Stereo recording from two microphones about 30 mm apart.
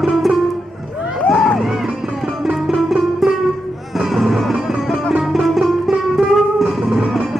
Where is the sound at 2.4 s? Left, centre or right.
Centre.